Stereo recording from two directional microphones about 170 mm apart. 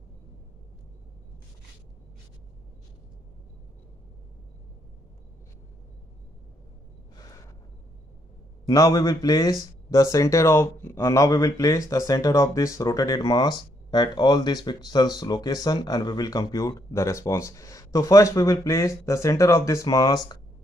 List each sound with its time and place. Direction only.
8.6 s speech: 20° left (ahead or behind)